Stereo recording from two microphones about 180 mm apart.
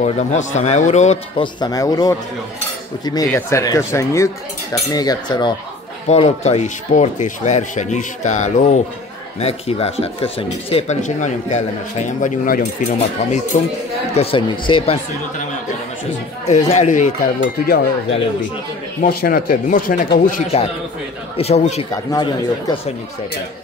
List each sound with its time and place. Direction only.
0.0 s speech: 40° left (ahead or behind)
1.4 s speech: 20° left (ahead or behind)
3.3 s speech: 15° left (ahead or behind)
6.0 s speech: 40° left (ahead or behind)
14.1 s speech: 30° left (ahead or behind)
16.4 s speech: 40° left (ahead or behind)
18.9 s speech: 55° left (ahead or behind)
21.4 s speech: 35° left (ahead or behind)
21.9 s speech: 25° left (ahead or behind)